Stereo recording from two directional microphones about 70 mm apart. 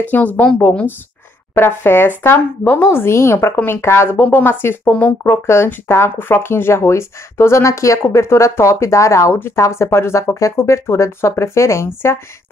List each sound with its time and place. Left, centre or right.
0.0 s speech: left